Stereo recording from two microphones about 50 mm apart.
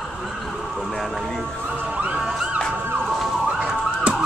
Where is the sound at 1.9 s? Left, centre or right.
Right.